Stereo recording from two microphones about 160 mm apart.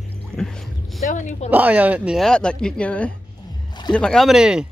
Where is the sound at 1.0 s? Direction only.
50° left (ahead or behind).